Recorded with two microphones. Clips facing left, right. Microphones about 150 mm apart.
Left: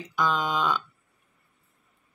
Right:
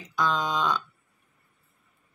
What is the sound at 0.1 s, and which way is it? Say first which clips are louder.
Speech: even; 10° left (ahead or behind).